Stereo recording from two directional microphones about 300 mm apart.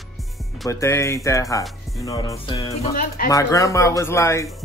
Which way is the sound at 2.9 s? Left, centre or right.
Left.